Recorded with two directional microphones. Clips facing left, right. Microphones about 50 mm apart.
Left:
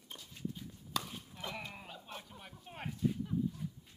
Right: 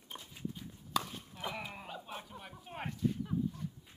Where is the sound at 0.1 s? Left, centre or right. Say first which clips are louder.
Right 4 dB; right.